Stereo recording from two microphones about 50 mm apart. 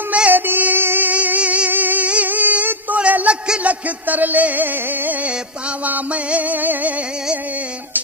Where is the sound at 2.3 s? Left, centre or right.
Right.